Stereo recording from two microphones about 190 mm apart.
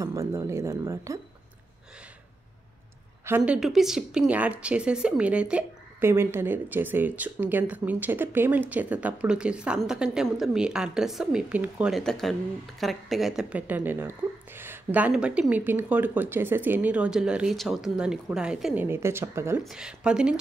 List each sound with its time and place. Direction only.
0.0 s a woman's voice: 15° right (ahead or behind)
3.3 s a woman's voice: 10° right (ahead or behind)
19.6 s speech: 5° right (ahead or behind)